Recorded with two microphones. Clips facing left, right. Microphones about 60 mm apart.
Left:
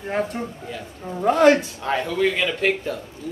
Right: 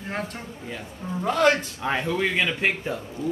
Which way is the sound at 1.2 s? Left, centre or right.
Left.